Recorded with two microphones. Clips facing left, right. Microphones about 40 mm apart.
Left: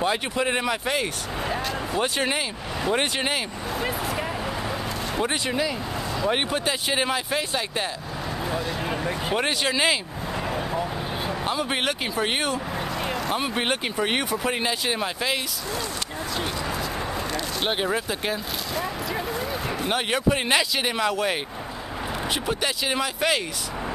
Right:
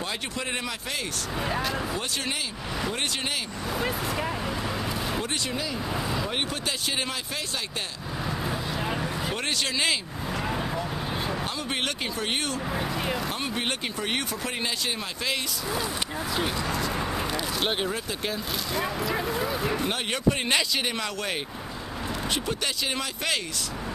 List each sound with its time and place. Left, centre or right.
0.0 s speech: left
1.4 s speech: centre
2.0 s speech: left
3.7 s speech: centre
5.2 s speech: left
8.5 s a sound: centre
9.0 s speech: centre
10.5 s vehicle: centre
11.4 s speech: centre
12.7 s vehicle: centre
13.3 s speech: centre
17.6 s speech: centre
18.8 s a sound: centre
19.9 s speech: centre